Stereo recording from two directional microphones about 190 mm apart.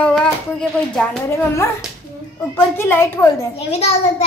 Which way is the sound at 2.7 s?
10° left (ahead or behind).